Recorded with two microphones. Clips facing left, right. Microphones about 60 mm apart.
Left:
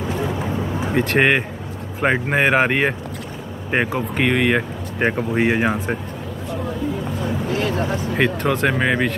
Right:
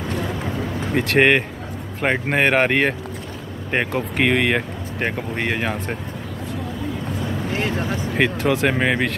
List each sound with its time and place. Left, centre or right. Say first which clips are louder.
0.2 s vehicle: left 2 dB; centre
0.9 s speech: right 1 dB; centre
7.5 s a sound: left 1 dB; right
8.1 s speech: right 1 dB; centre